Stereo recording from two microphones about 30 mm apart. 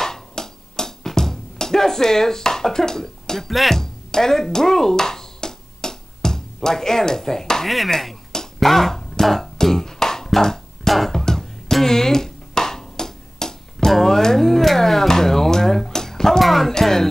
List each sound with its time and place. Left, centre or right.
0.0 s music: centre
3.4 s speech: centre
3.7 s music: centre
7.6 s speech: centre
9.2 s music: centre
13.9 s a sound: centre
16.7 s music: centre